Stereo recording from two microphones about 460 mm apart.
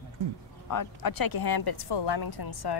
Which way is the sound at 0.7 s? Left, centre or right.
Left.